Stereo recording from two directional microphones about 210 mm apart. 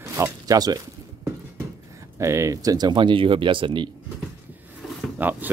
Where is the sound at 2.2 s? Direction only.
15° right (ahead or behind).